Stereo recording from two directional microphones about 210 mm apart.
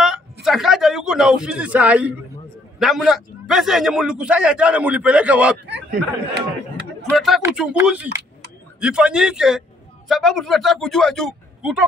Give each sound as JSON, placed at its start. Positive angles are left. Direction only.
{"t": 0.0, "sound": "a sound", "side_deg": 0}
{"t": 2.8, "sound": "a man's voice", "side_deg": 0}
{"t": 5.7, "sound": "speech", "side_deg": -55}
{"t": 7.1, "sound": "a man's voice", "side_deg": 0}